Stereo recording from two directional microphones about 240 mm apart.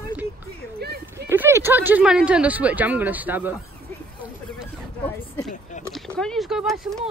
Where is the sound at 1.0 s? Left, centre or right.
Centre.